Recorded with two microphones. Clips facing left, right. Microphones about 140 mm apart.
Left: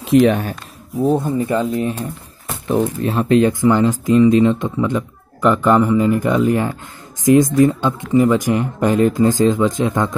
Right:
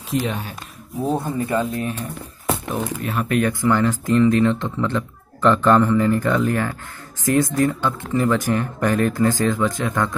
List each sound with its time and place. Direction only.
0.1 s speech: 60° left (ahead or behind)
1.1 s speech: 20° left (ahead or behind)